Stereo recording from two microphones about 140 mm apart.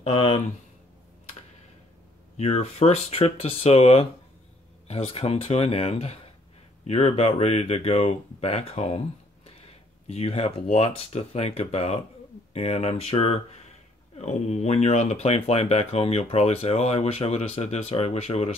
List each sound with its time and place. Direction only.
0.0 s speech: 45° left (ahead or behind)
2.3 s speech: 50° left (ahead or behind)
10.0 s speech: 45° left (ahead or behind)